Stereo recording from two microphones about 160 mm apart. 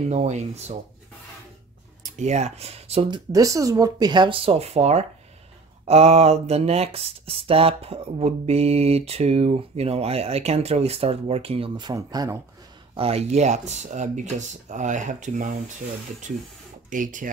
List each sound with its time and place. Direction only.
0.1 s speech: 45° right (ahead or behind)
2.1 s speech: 45° right (ahead or behind)
3.3 s speech: 20° right (ahead or behind)
12.9 s speech: 40° right (ahead or behind)
16.9 s speech: 55° right (ahead or behind)